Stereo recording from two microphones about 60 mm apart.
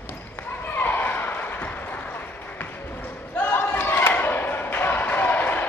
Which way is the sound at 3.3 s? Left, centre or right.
Left.